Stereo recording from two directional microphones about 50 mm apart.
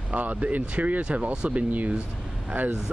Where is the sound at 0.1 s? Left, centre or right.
Right.